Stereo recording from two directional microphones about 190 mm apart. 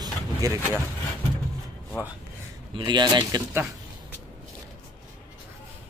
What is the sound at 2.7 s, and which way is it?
Speech, 25° right (ahead or behind).